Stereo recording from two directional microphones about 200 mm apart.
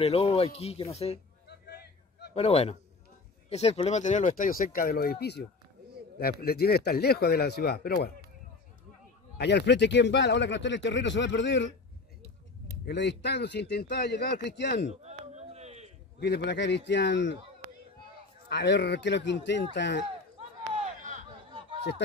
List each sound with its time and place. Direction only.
0.0 s speech: 30° left (ahead or behind)
1.5 s a sound: 55° left (ahead or behind)
2.3 s speech: 30° left (ahead or behind); by 8.1 s 50° left (ahead or behind)
9.4 s speech: 60° left (ahead or behind)
12.8 s speech: 60° left (ahead or behind)
15.0 s a sound: 35° right (ahead or behind)
16.2 s speech: 55° left (ahead or behind)
18.5 s speech: 60° left (ahead or behind)
20.3 s a sound: 35° right (ahead or behind)